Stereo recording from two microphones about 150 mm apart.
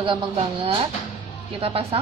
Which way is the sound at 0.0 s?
35° right (ahead or behind).